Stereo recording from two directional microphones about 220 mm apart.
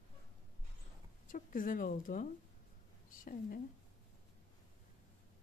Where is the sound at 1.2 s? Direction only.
40° left (ahead or behind).